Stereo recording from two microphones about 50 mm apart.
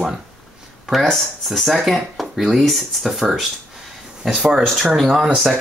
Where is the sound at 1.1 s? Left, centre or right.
Centre.